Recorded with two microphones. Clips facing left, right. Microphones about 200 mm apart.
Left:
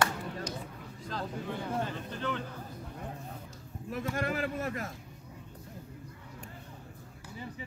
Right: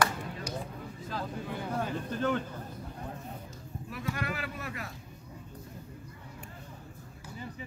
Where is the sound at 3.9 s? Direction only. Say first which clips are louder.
Left 3 dB; 45° left (ahead or behind).